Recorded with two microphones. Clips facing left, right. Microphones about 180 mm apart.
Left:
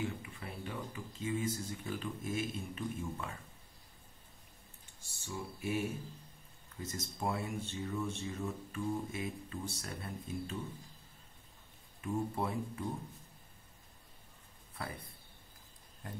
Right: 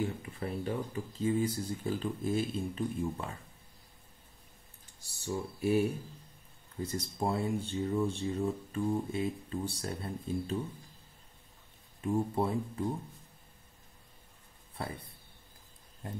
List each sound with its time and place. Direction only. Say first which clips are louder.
0.0 s speech: right 5 dB; 40° right (ahead or behind)
5.0 s speech: right 7 dB; 35° right (ahead or behind)
12.0 s speech: right 5 dB; 30° right (ahead or behind)
16.0 s speech: right 5 dB; 25° right (ahead or behind)